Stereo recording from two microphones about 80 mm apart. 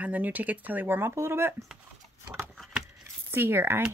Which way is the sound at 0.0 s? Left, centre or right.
Centre.